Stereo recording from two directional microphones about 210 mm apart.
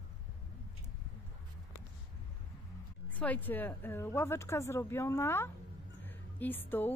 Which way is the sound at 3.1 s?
5° left (ahead or behind).